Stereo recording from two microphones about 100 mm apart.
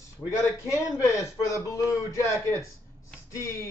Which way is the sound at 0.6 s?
30° left (ahead or behind).